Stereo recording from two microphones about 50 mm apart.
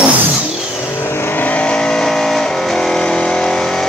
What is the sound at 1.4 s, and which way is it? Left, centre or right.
Vehicle, left.